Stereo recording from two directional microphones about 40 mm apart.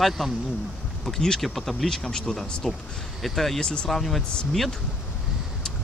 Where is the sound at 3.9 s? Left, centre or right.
Centre.